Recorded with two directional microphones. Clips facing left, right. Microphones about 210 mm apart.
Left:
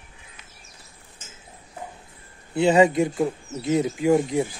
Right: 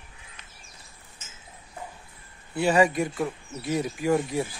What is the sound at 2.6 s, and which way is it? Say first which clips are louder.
Speech: left 4 dB; 20° left (ahead or behind).